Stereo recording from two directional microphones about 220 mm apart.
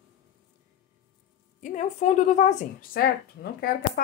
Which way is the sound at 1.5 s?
35° left (ahead or behind).